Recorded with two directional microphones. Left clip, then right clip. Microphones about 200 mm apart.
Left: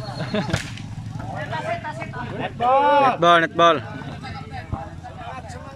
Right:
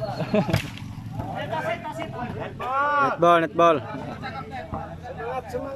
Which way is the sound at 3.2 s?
10° right (ahead or behind).